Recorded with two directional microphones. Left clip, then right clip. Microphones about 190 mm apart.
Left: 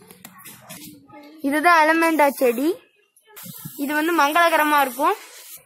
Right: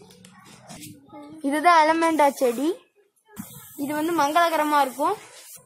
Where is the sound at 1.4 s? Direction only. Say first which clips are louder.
Left 2 dB; 20° left (ahead or behind).